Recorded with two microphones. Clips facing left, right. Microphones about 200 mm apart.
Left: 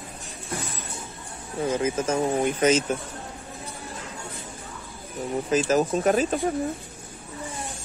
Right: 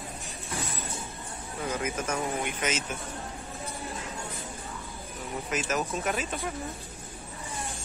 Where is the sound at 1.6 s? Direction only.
30° left (ahead or behind).